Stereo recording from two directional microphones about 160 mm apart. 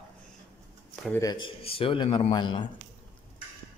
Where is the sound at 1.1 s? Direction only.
25° left (ahead or behind).